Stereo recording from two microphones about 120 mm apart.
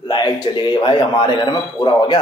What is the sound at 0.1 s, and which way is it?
A man's voice, 35° left (ahead or behind).